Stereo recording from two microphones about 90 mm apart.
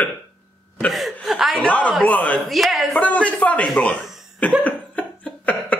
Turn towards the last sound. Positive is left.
turn(degrees=15)  # may be behind; listen again after turning